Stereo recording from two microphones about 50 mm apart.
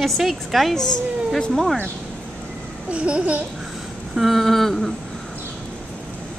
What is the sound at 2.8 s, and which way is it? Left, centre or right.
Babbling, right.